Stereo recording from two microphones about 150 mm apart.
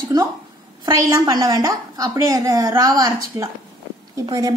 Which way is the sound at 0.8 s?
25° right (ahead or behind).